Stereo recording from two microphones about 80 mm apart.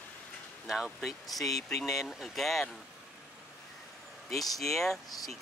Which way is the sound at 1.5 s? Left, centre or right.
Left.